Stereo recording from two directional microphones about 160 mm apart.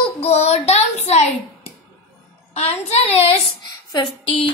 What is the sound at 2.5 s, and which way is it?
Speech, 40° left (ahead or behind).